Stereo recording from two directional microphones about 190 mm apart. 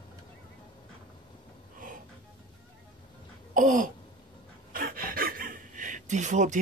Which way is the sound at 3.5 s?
45° right (ahead or behind).